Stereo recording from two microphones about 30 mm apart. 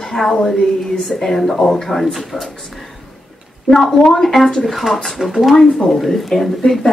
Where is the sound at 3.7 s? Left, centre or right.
Centre.